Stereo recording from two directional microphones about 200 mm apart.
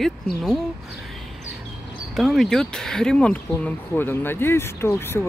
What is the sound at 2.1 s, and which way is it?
Speech, centre (ahead or behind).